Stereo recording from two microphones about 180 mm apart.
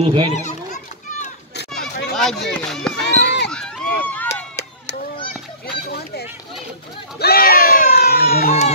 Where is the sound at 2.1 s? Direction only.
Centre (ahead or behind).